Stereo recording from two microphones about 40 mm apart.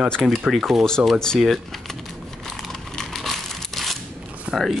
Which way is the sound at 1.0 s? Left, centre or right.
Right.